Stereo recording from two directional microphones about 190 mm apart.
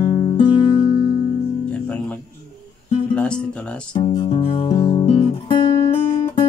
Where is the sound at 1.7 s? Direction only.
5° left (ahead or behind).